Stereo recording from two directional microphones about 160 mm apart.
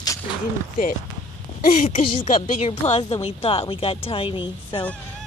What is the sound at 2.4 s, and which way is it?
Speech, 40° left (ahead or behind).